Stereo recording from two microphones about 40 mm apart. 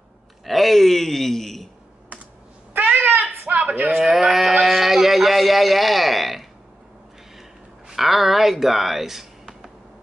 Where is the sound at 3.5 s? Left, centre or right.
Right.